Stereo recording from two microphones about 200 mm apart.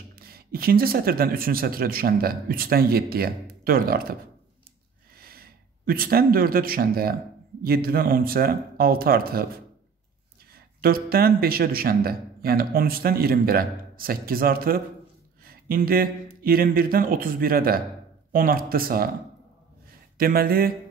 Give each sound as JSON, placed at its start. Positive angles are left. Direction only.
{"t": 0.1, "sound": "a man's voice", "side_deg": -50}
{"t": 10.5, "sound": "a man's voice", "side_deg": -50}
{"t": 20.2, "sound": "a man's voice", "side_deg": -45}